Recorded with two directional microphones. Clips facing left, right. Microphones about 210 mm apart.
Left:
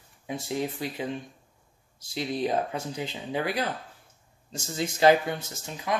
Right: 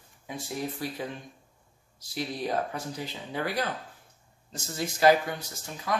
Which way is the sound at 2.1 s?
20° left (ahead or behind).